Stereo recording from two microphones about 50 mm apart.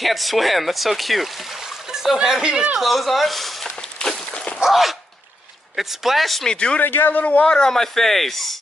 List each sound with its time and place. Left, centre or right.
0.0 s speech: centre
2.8 s a sound: centre
4.6 s a sound: centre
5.8 s speech: centre
6.5 s speech: centre
6.8 s a man's voice: left
7.4 s speech: centre
7.7 s speech: centre